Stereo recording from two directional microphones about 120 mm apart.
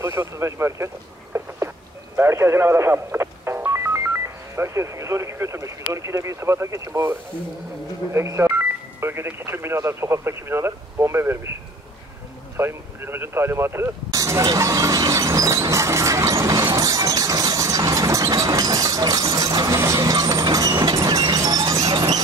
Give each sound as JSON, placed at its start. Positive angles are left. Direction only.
{"t": 0.0, "sound": "speech", "side_deg": -20}
{"t": 2.1, "sound": "speech", "side_deg": -20}
{"t": 12.5, "sound": "a sound", "side_deg": -20}